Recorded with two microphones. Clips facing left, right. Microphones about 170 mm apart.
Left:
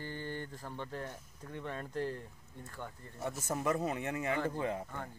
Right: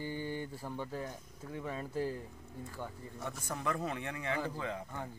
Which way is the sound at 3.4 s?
25° left (ahead or behind).